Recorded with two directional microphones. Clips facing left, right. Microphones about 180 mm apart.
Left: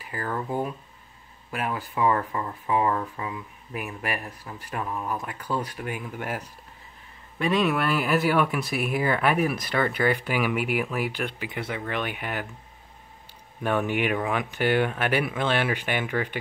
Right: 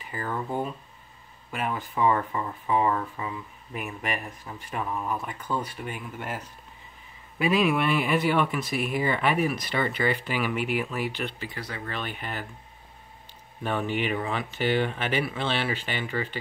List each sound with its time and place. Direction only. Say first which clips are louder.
0.1 s speech: left 1 dB; 5° left (ahead or behind)
2.0 s speech: even; 5° right (ahead or behind); by 6.4 s 10° left (ahead or behind)
7.3 s speech: even; 5° right (ahead or behind)
11.5 s speech: left 5 dB; 20° left (ahead or behind)
13.6 s speech: left 3 dB; 10° left (ahead or behind)